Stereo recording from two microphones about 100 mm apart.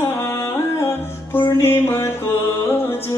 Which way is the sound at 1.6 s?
25° left (ahead or behind).